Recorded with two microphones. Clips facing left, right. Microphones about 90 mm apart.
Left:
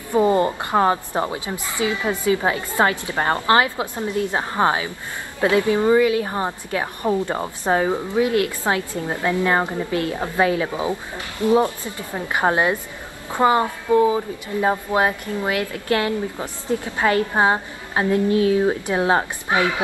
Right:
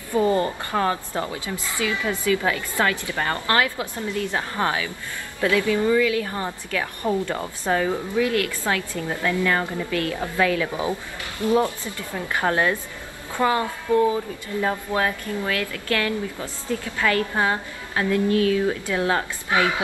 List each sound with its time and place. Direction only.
0.1 s a woman's voice: 20° left (ahead or behind)